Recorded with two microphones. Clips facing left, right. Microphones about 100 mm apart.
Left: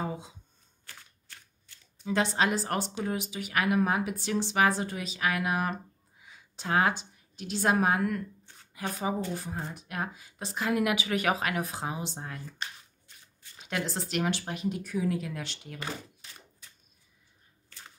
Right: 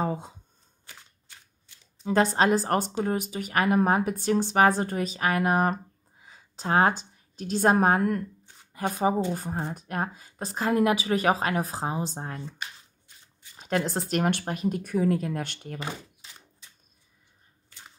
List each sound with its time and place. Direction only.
0.0 s shuffling cards: 50° right (ahead or behind)
0.8 s shuffling cards: 15° right (ahead or behind)
2.0 s a woman's voice: 45° right (ahead or behind)
13.6 s speech: 40° right (ahead or behind)
15.8 s a sound: 20° right (ahead or behind)